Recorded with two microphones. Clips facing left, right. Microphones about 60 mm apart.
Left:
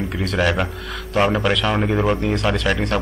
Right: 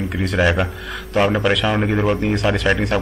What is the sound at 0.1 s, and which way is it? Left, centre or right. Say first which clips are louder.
A man's voice: right 3 dB; centre.